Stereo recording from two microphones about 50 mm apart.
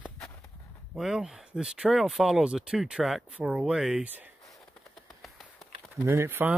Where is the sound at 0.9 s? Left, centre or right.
Centre.